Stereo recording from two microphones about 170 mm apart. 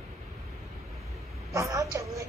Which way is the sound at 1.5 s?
20° right (ahead or behind).